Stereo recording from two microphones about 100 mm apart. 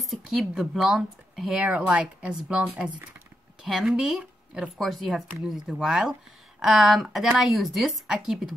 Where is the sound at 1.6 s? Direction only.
10° right (ahead or behind).